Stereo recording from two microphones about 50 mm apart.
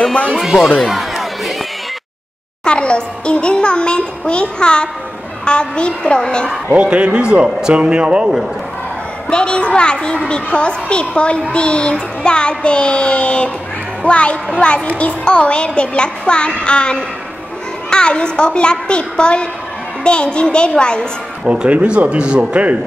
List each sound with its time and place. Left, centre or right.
0.0 s speech: left
0.8 s a sound: centre
2.6 s a child's voice: centre
6.7 s speech: right
9.3 s a child's voice: centre
21.5 s speech: right